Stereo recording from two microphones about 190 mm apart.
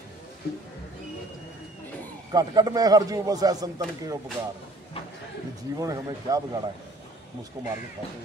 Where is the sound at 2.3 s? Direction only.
20° right (ahead or behind).